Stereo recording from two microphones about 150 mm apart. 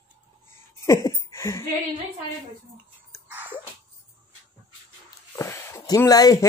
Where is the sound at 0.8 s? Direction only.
25° left (ahead or behind).